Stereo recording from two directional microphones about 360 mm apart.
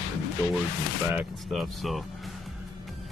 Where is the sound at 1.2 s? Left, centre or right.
Centre.